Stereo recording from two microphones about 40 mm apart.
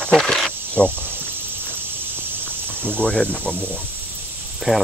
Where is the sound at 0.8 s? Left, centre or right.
Left.